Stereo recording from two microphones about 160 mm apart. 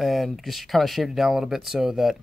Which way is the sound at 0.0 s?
Centre (ahead or behind).